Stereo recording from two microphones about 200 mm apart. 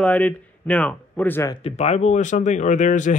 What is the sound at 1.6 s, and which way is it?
Speech, 35° left (ahead or behind).